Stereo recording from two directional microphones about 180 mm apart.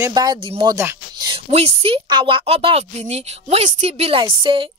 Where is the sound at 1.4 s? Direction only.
35° right (ahead or behind).